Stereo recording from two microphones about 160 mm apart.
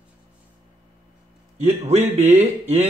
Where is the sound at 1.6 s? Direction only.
40° right (ahead or behind).